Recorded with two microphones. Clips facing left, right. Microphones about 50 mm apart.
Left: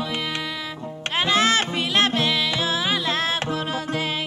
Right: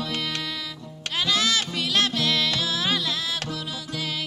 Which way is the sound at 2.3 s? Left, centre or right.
Centre.